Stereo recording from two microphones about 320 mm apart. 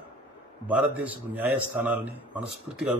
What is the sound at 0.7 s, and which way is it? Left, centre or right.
A man's voice, centre.